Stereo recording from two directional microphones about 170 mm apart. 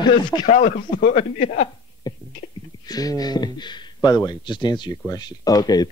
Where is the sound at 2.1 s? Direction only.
25° left (ahead or behind).